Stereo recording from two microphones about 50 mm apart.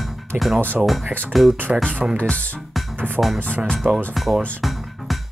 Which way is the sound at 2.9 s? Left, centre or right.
Right.